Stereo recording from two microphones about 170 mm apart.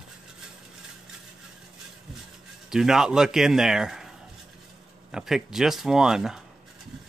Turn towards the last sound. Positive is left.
turn(degrees=-5)  # may be behind; listen again after turning